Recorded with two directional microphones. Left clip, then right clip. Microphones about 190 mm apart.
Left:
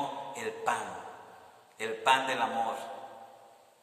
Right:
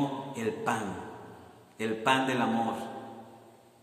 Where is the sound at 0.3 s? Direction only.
Centre (ahead or behind).